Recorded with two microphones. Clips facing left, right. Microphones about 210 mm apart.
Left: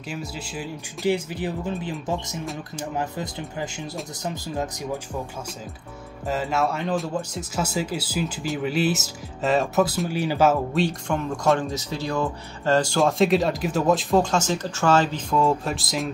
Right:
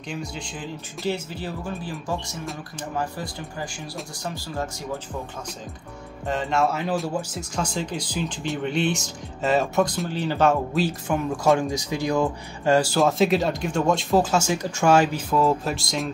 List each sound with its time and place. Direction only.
0.1 s speech: 5° left (ahead or behind)
6.2 s speech: 5° left (ahead or behind)